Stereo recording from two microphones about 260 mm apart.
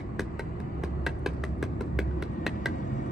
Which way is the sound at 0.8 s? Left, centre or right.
Centre.